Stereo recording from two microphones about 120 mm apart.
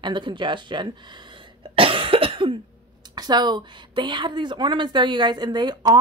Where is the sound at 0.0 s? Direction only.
40° right (ahead or behind).